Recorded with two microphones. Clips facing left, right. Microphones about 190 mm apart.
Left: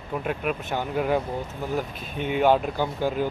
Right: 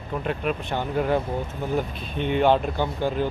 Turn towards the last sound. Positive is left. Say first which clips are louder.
# right 1 dB
turn(degrees=10)  # may be behind; listen again after turning